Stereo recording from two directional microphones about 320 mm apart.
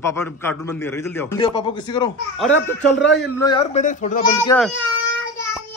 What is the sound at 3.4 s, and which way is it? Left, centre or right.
Speech, centre.